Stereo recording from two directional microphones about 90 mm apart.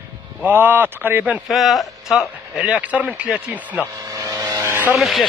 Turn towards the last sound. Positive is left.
turn(degrees=0)  # may be behind; listen again after turning